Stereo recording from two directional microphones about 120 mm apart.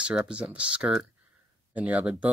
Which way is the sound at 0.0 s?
10° right (ahead or behind).